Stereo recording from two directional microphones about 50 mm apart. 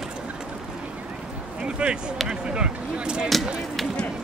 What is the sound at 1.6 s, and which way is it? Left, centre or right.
Speech, right.